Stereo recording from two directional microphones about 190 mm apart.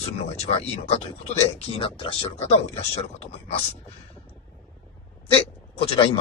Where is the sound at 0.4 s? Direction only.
35° left (ahead or behind).